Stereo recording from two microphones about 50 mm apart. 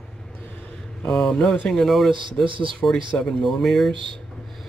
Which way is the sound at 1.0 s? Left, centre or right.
Centre.